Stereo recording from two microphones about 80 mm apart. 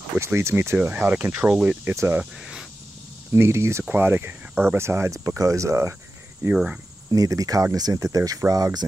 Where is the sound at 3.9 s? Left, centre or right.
Right.